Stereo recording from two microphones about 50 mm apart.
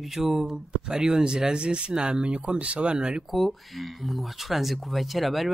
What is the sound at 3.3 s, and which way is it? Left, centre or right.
Speech, centre.